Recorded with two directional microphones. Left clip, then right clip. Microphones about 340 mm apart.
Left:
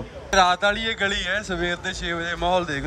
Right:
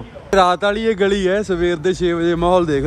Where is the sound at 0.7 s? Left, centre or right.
Centre.